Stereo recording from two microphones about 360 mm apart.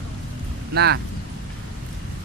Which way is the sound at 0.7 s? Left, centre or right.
Right.